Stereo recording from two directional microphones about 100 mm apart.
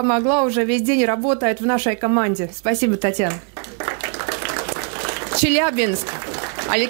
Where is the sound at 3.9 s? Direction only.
15° right (ahead or behind).